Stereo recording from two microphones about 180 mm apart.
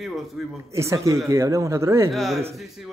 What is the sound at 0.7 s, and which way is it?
Speech, 15° right (ahead or behind).